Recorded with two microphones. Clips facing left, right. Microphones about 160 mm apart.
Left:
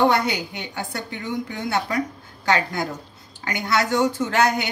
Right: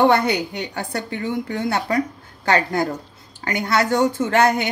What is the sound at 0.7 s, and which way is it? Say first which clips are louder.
A woman's voice: right 3 dB; 35° right (ahead or behind).